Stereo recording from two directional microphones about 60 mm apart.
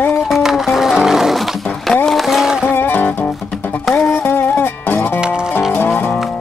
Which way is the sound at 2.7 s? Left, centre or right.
Left.